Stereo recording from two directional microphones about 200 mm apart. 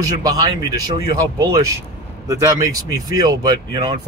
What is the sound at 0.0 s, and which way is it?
Speech, 20° right (ahead or behind).